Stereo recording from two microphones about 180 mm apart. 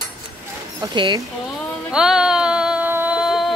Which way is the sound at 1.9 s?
5° right (ahead or behind).